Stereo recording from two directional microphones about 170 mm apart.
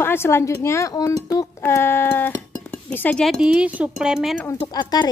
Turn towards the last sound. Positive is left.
turn(degrees=25)  # may be behind; listen again after turning